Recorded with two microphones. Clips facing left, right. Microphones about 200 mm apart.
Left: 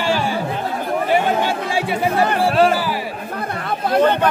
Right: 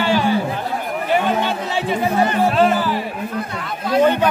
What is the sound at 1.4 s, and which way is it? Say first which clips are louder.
Chatter: left 1 dB; 10° left (ahead or behind).